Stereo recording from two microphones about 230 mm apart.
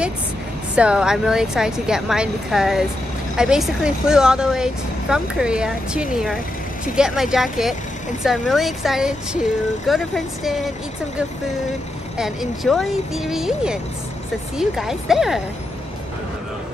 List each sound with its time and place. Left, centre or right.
0.7 s speech: centre
12.2 s speech: centre